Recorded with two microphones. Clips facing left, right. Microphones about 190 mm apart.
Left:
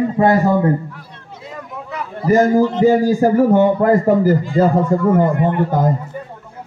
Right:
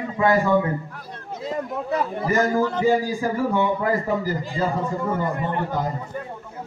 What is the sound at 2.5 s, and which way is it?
Speech, 20° left (ahead or behind).